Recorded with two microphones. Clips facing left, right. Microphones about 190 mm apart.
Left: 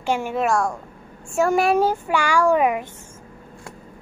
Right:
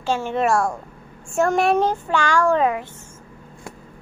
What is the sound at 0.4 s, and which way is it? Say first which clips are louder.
A child's voice: right 1 dB; centre (ahead or behind).